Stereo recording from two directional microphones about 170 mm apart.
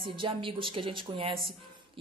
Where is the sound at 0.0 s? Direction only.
30° right (ahead or behind).